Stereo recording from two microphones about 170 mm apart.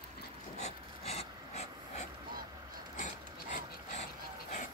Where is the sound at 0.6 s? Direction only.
40° left (ahead or behind).